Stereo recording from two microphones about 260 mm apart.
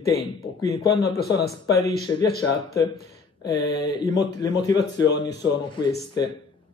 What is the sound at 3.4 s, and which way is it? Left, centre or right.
A man's voice, centre.